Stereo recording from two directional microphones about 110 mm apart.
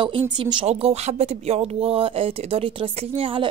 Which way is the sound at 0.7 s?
70° right (ahead or behind).